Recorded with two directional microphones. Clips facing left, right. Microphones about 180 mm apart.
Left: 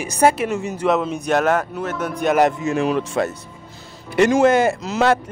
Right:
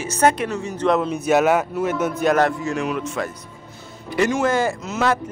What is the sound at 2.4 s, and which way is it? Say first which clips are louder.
Speech: left 3 dB; 20° left (ahead or behind).